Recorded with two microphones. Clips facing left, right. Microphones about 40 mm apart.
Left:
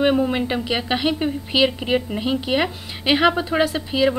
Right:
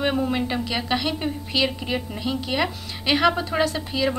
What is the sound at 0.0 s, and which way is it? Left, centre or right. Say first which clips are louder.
A woman's voice: left 4 dB; centre.